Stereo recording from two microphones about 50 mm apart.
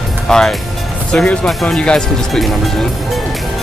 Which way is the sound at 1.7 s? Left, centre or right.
Centre.